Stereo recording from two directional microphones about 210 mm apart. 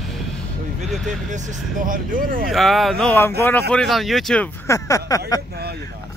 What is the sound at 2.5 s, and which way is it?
Speech, centre (ahead or behind).